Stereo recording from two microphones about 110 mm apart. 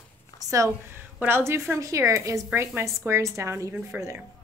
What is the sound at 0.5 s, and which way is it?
A woman's voice, 30° right (ahead or behind).